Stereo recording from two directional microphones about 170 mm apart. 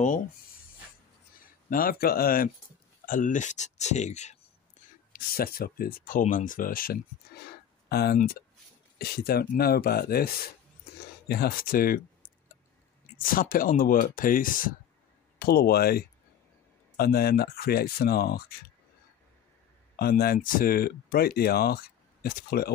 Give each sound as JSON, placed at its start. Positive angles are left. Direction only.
{"t": 1.7, "sound": "speech", "side_deg": 60}
{"t": 5.1, "sound": "speech", "side_deg": 60}
{"t": 7.4, "sound": "a sound", "side_deg": 70}
{"t": 8.9, "sound": "speech", "side_deg": 60}
{"t": 13.2, "sound": "speech", "side_deg": 55}
{"t": 15.3, "sound": "speech", "side_deg": 65}
{"t": 20.0, "sound": "speech", "side_deg": 65}